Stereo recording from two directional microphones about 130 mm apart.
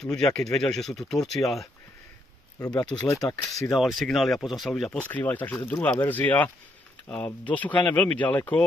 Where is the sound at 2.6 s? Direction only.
30° left (ahead or behind).